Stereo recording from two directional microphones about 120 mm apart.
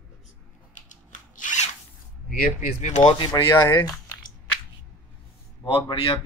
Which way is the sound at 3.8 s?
30° left (ahead or behind).